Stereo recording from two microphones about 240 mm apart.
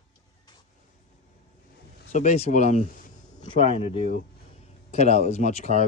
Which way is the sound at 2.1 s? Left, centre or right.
Left.